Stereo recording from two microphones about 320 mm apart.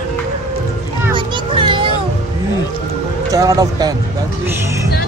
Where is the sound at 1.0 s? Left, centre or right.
Centre.